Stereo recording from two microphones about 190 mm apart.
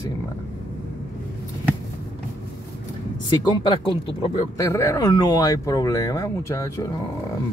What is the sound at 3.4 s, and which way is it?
Speech, 20° left (ahead or behind).